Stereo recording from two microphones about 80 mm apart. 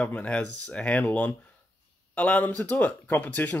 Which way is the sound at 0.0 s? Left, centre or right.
Centre.